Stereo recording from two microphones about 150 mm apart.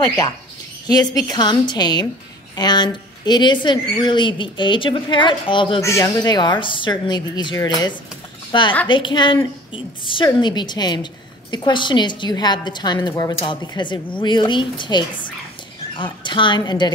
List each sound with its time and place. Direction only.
0.8 s a woman's voice: 25° left (ahead or behind)
5.8 s a woman's voice: 20° left (ahead or behind)